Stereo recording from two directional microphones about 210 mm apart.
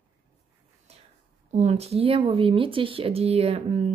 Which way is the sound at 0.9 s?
30° right (ahead or behind).